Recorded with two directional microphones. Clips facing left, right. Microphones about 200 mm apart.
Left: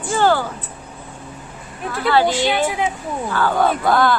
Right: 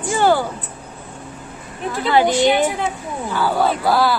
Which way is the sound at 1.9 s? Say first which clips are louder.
Even; 15° right (ahead or behind).